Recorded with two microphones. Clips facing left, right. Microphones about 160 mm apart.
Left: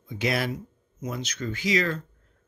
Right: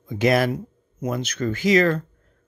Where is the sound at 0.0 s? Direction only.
50° right (ahead or behind).